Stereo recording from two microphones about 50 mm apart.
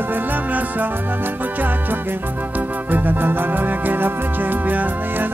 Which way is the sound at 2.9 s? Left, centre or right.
Right.